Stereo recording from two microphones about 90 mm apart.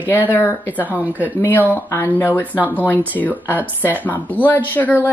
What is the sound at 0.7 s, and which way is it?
Speech, 20° right (ahead or behind).